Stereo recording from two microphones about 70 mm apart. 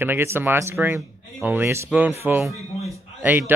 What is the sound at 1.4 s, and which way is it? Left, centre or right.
Speech, right.